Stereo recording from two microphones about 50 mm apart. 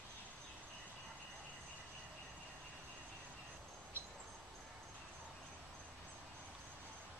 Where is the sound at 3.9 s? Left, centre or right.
Right.